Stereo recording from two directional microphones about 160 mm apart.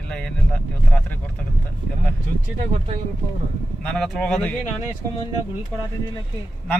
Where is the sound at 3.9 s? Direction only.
5° left (ahead or behind).